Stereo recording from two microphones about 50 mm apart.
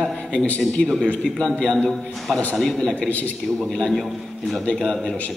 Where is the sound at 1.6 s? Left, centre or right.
Centre.